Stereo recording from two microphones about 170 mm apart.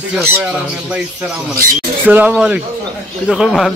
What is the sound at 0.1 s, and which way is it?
Speech, 5° right (ahead or behind).